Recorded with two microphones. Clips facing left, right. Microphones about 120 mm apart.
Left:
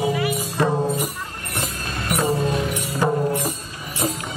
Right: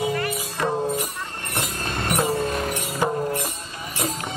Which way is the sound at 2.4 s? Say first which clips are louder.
Left 2 dB; 50° right (ahead or behind).